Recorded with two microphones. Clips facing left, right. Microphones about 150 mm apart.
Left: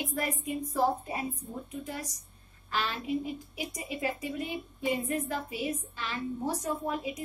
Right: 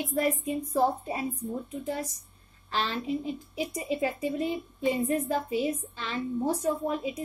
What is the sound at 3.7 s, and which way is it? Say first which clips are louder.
A woman's voice: right 4 dB; 30° right (ahead or behind).